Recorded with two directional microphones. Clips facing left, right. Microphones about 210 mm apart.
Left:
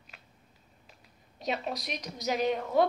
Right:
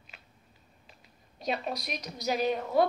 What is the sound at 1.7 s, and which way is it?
Speech, 20° left (ahead or behind).